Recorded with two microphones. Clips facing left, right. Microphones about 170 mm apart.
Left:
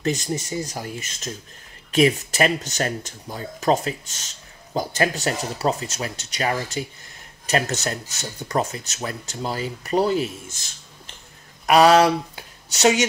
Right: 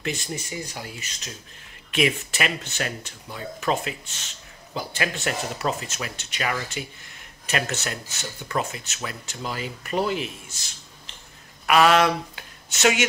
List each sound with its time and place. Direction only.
0.0 s speech: 40° left (ahead or behind)
11.6 s speech: 35° left (ahead or behind)